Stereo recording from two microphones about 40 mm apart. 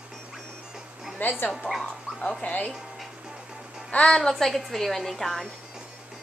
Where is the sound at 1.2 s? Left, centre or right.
Left.